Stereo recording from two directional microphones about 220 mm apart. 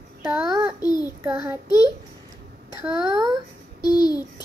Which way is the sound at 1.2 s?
5° right (ahead or behind).